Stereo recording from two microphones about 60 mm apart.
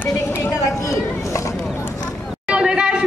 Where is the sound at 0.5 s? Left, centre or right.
Left.